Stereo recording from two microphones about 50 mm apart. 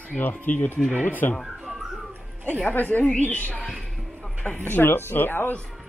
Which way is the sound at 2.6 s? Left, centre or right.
Left.